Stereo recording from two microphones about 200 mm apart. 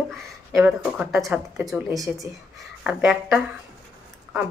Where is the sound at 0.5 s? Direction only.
5° right (ahead or behind).